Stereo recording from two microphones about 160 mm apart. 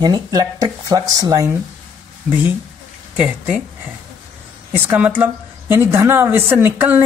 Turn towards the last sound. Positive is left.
turn(degrees=-10)  # may be behind; listen again after turning